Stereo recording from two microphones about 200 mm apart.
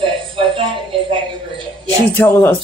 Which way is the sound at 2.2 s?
10° left (ahead or behind).